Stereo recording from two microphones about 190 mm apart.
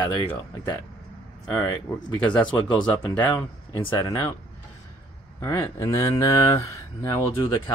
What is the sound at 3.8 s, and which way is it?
Speech, 20° left (ahead or behind).